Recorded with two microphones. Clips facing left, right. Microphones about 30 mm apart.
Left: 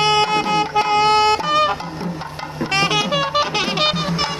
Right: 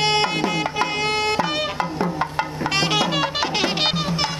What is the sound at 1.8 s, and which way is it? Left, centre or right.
Music, right.